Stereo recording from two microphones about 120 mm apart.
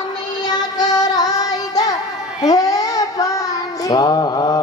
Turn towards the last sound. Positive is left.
turn(degrees=30)  # may be behind; listen again after turning